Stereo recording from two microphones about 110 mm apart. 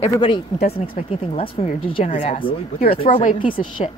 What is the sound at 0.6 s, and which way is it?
Speech, 85° left.